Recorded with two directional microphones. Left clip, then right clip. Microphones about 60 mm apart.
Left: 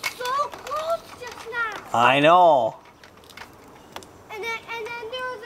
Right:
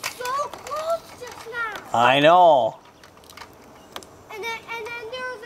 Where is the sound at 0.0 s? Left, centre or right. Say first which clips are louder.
Left 1 dB; centre.